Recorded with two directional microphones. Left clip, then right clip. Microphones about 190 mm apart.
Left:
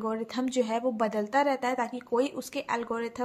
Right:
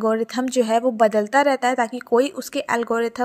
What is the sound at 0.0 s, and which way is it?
Speech, 35° right (ahead or behind).